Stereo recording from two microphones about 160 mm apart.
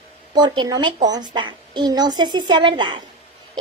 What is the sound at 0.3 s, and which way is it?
A woman's voice, 25° right (ahead or behind).